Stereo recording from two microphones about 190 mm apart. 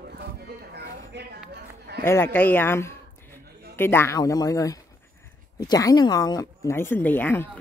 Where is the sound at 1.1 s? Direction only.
60° right (ahead or behind).